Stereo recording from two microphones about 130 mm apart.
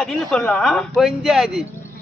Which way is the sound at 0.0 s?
5° left (ahead or behind).